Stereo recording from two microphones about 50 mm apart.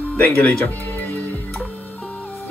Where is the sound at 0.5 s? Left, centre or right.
Left.